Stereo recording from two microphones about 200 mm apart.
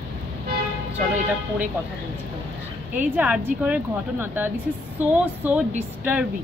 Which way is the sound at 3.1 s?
5° right (ahead or behind).